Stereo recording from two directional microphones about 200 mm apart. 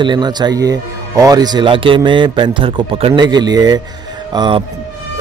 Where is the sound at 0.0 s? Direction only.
20° right (ahead or behind).